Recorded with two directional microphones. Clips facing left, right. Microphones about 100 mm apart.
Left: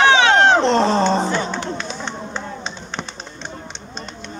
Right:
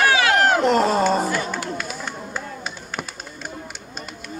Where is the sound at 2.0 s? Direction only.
25° left (ahead or behind).